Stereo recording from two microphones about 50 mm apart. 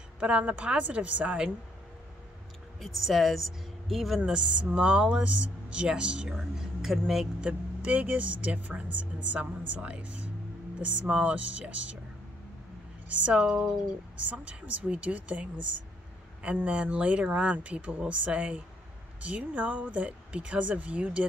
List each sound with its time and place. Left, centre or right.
0.2 s speech: right
2.8 s speech: centre
4.2 s speech: centre
7.3 s speech: right
13.1 s speech: right
13.4 s speech: centre
14.1 s speech: right